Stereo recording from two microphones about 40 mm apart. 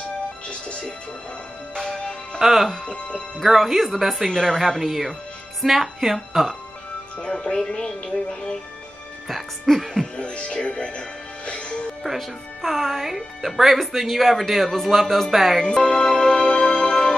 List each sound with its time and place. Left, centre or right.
0.5 s speech: left
2.3 s speech: centre
4.3 s speech: centre
4.6 s speech: centre
7.2 s speech: centre
9.3 s speech: centre
10.1 s speech: left
12.0 s speech: centre
15.6 s music: centre